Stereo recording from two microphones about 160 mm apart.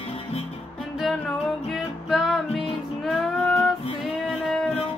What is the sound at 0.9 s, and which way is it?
Music, centre (ahead or behind).